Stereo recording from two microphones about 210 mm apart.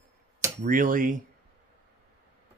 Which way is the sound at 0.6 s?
40° right (ahead or behind).